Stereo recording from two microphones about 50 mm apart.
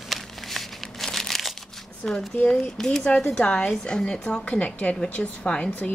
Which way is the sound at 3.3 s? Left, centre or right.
Left.